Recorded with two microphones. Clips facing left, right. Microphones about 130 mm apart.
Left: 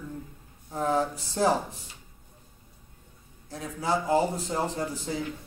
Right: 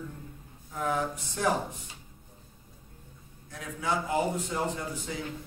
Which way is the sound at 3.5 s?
35° left (ahead or behind).